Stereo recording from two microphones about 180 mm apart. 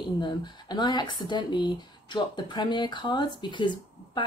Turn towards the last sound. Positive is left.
turn(degrees=25)  # may be behind; listen again after turning